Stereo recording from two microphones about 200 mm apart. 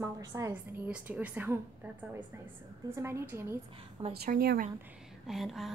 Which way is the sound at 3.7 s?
30° right (ahead or behind).